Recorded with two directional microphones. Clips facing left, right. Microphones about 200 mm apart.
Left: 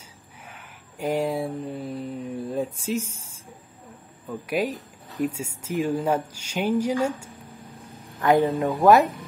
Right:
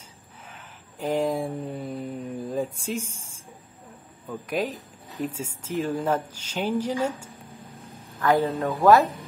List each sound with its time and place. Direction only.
0.5 s a sound: 10° left (ahead or behind)
4.3 s speech: 10° left (ahead or behind)
8.2 s speech: 20° left (ahead or behind)